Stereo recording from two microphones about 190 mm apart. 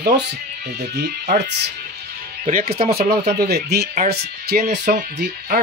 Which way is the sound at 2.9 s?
55° right (ahead or behind).